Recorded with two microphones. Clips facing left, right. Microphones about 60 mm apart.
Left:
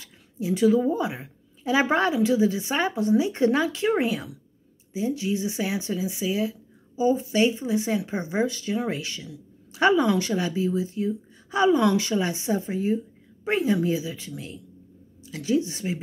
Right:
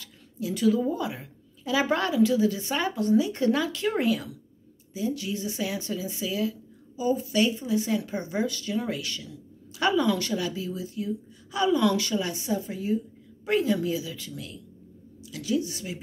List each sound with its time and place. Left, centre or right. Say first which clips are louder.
0.0 s a woman's voice: left 2 dB; left